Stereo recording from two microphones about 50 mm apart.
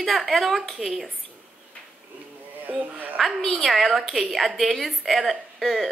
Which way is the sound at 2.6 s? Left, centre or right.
Right.